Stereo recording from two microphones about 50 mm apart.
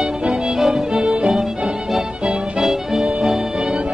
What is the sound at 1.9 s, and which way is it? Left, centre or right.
Music, centre.